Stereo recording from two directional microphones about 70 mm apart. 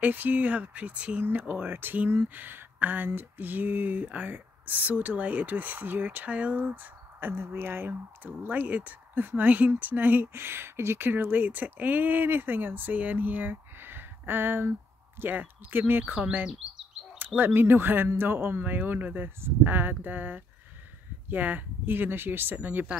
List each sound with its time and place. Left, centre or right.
0.0 s speech: right
1.5 s speech: right
17.4 s speech: right